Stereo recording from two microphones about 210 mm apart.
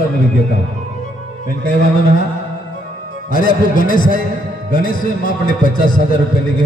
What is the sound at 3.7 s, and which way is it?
A man's voice, 40° left (ahead or behind).